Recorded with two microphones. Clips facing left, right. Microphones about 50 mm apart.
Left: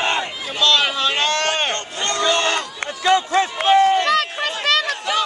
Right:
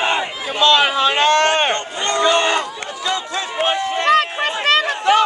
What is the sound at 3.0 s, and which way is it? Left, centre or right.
Music, left.